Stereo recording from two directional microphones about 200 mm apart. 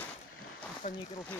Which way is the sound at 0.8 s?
30° left (ahead or behind).